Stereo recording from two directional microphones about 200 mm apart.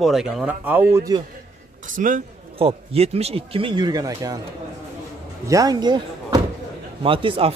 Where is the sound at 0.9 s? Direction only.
20° right (ahead or behind).